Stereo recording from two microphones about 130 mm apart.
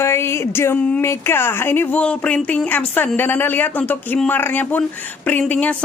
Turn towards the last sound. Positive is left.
turn(degrees=10)  # may be behind; listen again after turning